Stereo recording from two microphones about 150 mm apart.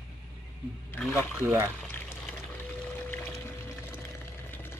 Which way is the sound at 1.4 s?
15° right (ahead or behind).